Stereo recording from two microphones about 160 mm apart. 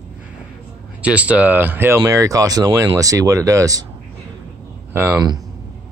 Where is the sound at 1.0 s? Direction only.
10° right (ahead or behind).